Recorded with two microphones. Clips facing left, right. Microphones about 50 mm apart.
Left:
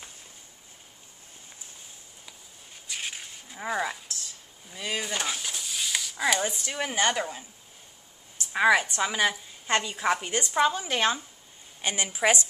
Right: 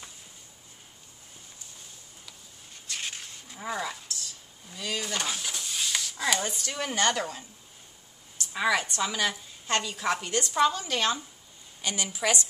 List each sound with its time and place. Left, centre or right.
2.9 s a sound: centre
4.7 s speech: left
5.0 s speech: centre
8.4 s a woman's voice: left